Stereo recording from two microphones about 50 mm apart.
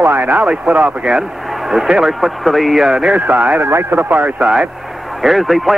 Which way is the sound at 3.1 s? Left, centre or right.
Right.